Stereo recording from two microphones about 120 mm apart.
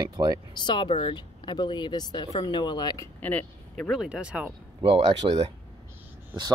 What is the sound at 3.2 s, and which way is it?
Speech, 10° left (ahead or behind).